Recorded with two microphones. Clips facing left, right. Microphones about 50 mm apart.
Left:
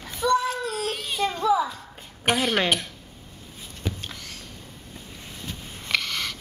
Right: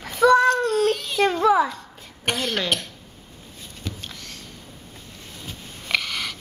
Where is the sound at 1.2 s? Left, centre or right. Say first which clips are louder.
Right 4 dB; right.